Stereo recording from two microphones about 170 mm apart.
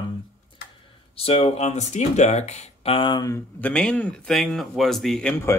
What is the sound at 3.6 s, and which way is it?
Speech, 5° left (ahead or behind).